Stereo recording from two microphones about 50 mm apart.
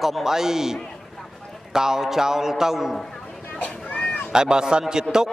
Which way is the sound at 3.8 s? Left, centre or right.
Left.